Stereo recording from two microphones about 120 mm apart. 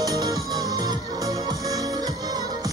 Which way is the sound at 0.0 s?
30° right (ahead or behind).